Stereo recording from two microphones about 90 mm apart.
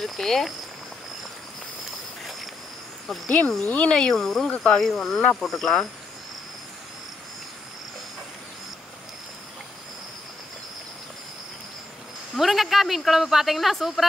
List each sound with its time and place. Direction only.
0.0 s speech: 5° left (ahead or behind)
3.3 s speech: 15° left (ahead or behind)
12.4 s speech: centre (ahead or behind)